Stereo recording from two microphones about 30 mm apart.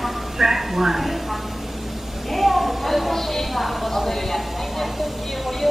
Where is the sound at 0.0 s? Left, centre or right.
Centre.